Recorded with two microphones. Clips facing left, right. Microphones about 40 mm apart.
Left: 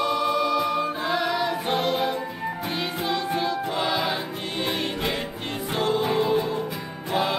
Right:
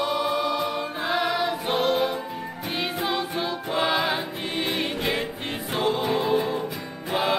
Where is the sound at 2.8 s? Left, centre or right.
Centre.